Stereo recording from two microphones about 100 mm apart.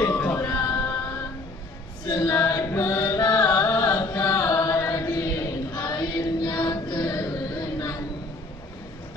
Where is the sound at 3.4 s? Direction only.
35° left (ahead or behind).